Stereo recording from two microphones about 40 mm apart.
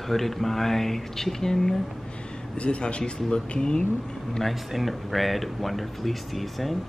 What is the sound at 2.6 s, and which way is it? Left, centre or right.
Speech, left.